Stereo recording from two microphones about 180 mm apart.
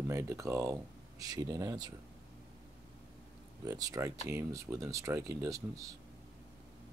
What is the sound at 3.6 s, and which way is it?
Speech, 20° right (ahead or behind).